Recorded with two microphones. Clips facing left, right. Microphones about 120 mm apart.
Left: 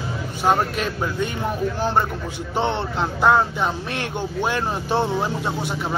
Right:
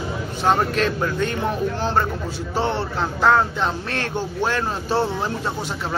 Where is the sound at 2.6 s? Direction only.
20° left (ahead or behind).